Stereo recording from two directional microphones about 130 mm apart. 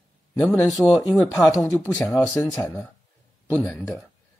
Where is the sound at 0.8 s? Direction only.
10° right (ahead or behind).